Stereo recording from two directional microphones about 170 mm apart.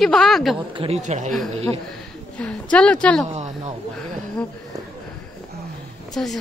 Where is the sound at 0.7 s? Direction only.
35° right (ahead or behind).